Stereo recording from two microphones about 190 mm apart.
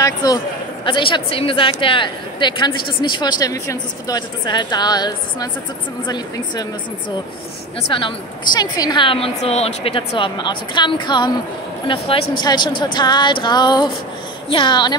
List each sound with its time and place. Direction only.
0.0 s a woman's voice: 20° left (ahead or behind)
7.9 s a woman's voice: 25° left (ahead or behind)